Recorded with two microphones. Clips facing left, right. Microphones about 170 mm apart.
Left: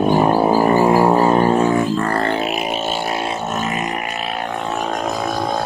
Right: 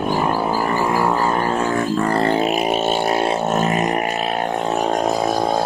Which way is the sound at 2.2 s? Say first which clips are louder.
Right 2 dB; 30° right (ahead or behind).